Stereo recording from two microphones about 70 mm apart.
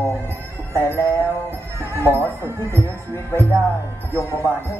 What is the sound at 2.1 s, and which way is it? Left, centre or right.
Speech, right.